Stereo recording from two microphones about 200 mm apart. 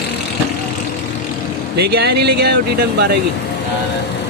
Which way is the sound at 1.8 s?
55° right (ahead or behind).